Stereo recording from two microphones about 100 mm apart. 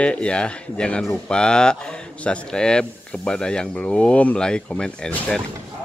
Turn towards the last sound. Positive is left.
turn(degrees=5)  # may be behind; listen again after turning